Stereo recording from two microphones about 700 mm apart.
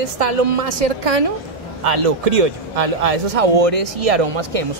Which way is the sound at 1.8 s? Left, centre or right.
Right.